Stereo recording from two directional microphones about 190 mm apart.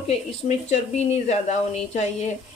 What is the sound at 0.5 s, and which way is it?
Speech, 35° left (ahead or behind).